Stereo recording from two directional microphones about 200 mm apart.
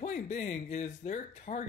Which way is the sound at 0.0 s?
35° left (ahead or behind).